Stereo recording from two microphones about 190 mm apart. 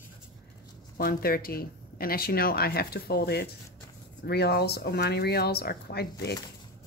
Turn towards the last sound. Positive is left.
turn(degrees=55)  # may be behind; listen again after turning